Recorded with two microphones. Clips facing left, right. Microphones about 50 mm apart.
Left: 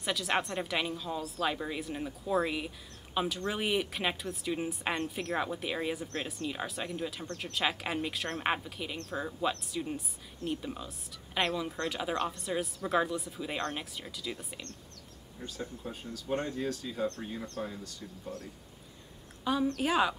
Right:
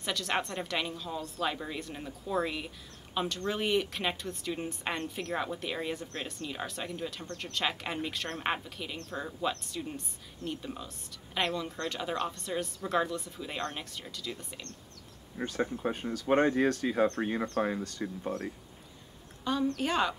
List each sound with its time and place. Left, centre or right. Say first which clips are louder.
0.0 s speech: left 1 dB; centre
15.3 s speech: right 9 dB; right
19.4 s a woman's voice: even; centre